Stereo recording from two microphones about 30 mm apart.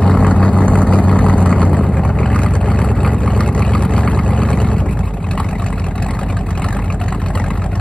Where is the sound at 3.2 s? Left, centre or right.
Left.